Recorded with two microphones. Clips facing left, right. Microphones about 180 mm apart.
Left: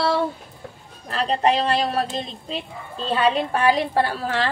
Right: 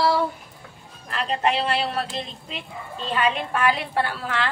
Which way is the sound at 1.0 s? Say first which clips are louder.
Left 4 dB; 35° left (ahead or behind).